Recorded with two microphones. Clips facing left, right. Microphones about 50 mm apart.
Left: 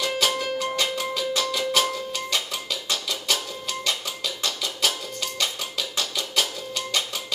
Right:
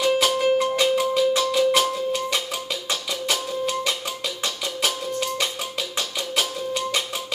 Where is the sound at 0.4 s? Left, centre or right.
Right.